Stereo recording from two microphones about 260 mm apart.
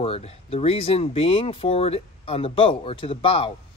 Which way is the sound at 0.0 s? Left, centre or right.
Left.